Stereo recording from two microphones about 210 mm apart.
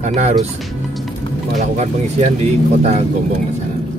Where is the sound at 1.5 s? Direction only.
30° right (ahead or behind).